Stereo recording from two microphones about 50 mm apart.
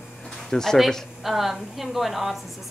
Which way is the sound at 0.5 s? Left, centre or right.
Centre.